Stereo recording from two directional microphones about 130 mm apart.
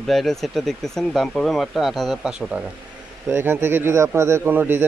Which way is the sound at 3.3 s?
20° right (ahead or behind).